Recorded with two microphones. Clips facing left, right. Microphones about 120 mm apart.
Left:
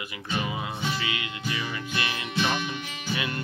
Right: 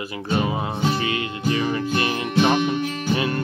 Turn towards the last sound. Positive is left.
turn(degrees=-40)  # may be behind; listen again after turning